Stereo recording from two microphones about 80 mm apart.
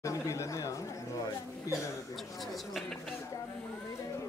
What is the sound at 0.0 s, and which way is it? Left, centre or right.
Chatter, left.